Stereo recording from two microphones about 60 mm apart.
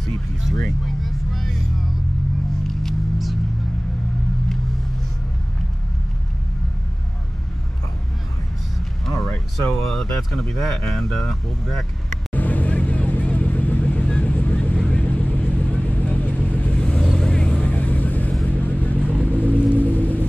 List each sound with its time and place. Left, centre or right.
0.0 s speech: centre
0.7 s vehicle: centre
2.6 s a sound: centre
9.0 s a sound: centre
9.8 s speech: centre
12.3 s vehicle: left
16.7 s vehicle: centre
18.9 s vehicle: right
19.7 s vehicle: left